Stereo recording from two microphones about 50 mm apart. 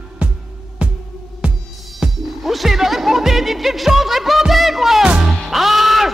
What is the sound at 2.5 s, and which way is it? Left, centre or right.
Music, centre.